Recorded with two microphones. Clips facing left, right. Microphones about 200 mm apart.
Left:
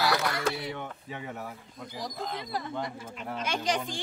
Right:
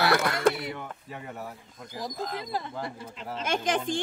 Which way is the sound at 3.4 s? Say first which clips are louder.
Right 3 dB; 50° right (ahead or behind).